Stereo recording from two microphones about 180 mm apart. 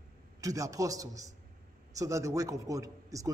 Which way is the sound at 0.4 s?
20° right (ahead or behind).